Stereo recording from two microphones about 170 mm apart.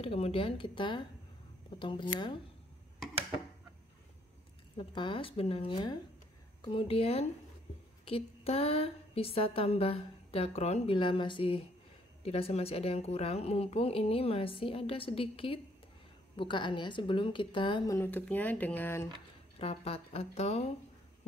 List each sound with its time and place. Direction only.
0.0 s a woman's voice: 35° left (ahead or behind)
4.7 s a woman's voice: 30° left (ahead or behind)
17.9 s speech: 10° left (ahead or behind)
19.6 s a woman's voice: 35° left (ahead or behind)